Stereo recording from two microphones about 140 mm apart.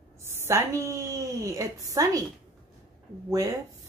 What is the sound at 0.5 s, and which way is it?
Speech, 20° right (ahead or behind).